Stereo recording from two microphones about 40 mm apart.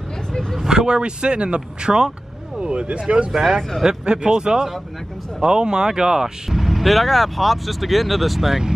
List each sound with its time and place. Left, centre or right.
0.7 s speech: centre
3.3 s speech: centre
3.8 s speech: right